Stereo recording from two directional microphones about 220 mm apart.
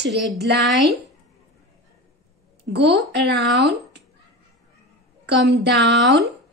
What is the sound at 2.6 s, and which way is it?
A woman's voice, 50° right (ahead or behind).